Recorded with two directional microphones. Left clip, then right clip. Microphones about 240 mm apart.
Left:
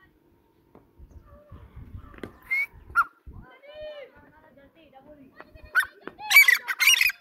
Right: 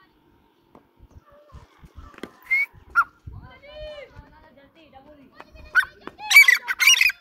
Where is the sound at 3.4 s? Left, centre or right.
Right.